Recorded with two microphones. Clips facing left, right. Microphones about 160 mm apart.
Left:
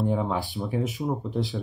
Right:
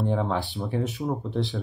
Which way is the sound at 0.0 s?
10° left (ahead or behind).